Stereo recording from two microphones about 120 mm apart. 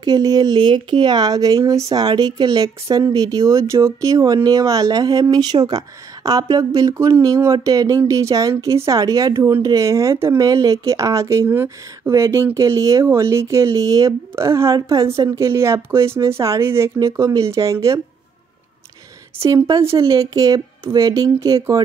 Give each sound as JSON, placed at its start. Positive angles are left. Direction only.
{"t": 0.0, "sound": "speech", "side_deg": -35}
{"t": 19.4, "sound": "speech", "side_deg": -30}